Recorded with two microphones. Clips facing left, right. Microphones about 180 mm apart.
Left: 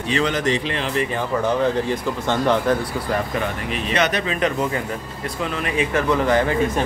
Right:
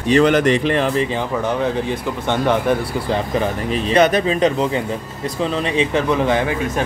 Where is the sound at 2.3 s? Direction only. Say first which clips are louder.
Right 2 dB; 15° right (ahead or behind).